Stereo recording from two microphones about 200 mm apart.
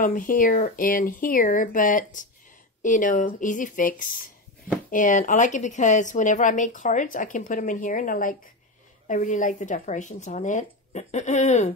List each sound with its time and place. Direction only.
0.0 s speech: 45° left (ahead or behind)